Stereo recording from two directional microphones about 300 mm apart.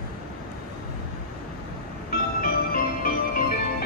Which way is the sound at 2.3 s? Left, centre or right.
Left.